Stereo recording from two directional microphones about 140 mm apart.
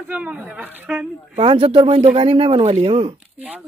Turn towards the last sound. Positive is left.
turn(degrees=-10)  # may be behind; listen again after turning